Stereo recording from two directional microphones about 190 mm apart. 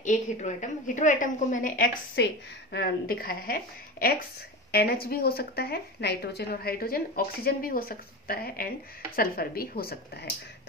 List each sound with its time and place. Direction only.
0.0 s a woman's voice: 40° left (ahead or behind)
2.2 s a woman's voice: 60° left (ahead or behind)